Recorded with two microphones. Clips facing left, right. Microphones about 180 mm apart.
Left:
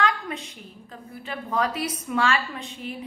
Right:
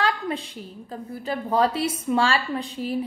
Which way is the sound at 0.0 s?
35° right (ahead or behind).